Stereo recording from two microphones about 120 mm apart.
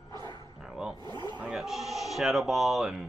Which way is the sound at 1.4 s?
Centre (ahead or behind).